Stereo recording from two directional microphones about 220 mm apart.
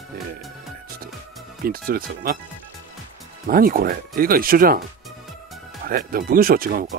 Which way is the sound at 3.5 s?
40° right (ahead or behind).